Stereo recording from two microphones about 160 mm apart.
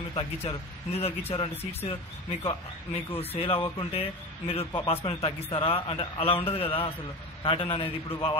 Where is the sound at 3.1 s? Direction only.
40° left (ahead or behind).